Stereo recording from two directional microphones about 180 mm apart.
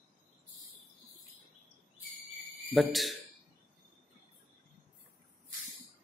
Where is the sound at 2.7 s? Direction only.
Centre (ahead or behind).